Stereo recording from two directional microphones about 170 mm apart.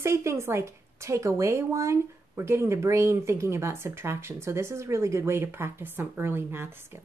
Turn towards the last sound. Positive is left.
turn(degrees=-15)  # may be behind; listen again after turning